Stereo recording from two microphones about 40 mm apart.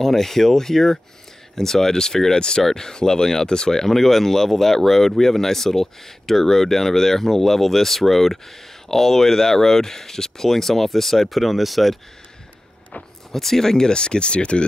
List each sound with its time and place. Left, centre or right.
0.0 s speech: centre
13.3 s speech: centre; by 14.6 s left